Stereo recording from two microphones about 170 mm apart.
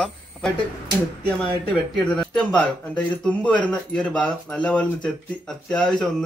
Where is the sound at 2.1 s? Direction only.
5° left (ahead or behind).